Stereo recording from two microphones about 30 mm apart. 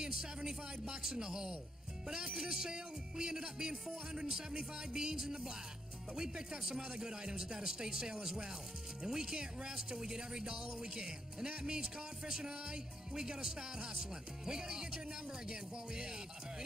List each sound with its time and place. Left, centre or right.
0.0 s speech: right